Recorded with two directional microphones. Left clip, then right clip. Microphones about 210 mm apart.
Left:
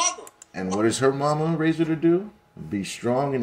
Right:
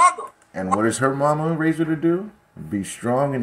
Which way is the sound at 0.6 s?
15° right (ahead or behind).